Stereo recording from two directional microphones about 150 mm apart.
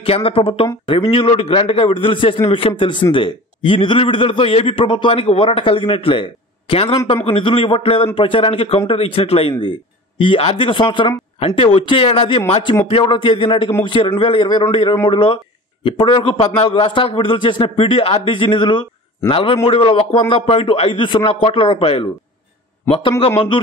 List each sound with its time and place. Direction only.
0.0 s a man's voice: 40° left (ahead or behind)